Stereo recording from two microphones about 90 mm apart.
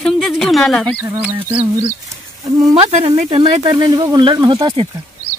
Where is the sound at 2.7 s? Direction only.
90° right; by 3.7 s 75° right (ahead or behind).